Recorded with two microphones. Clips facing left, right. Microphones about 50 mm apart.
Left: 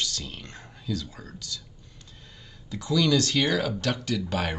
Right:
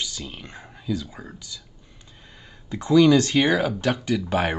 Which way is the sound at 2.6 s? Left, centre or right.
Right.